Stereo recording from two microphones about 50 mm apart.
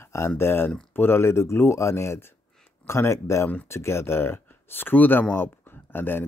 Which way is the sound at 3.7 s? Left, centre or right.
Left.